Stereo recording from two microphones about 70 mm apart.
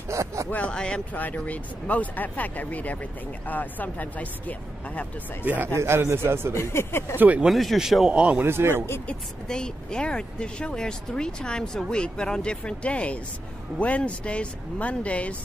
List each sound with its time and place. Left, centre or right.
0.1 s a sound: right
0.5 s speech: centre
1.1 s speech: left
5.4 s speech: right
5.8 s speech: right
6.5 s speech: left
7.2 s speech: right
7.4 s speech: centre
8.1 s a man's voice: centre
8.5 s speech: right
9.0 s speech: centre